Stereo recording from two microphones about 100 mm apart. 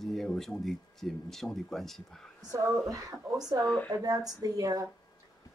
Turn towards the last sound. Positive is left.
turn(degrees=-35)  # may be behind; listen again after turning